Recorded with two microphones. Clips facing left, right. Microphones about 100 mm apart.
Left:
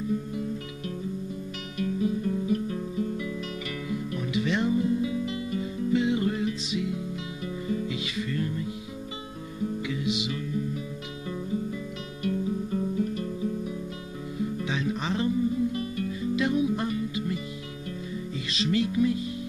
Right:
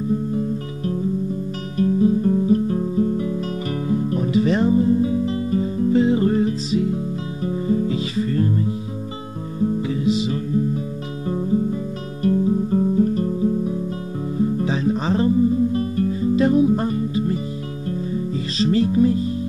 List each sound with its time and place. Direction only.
0.1 s music: 35° right (ahead or behind)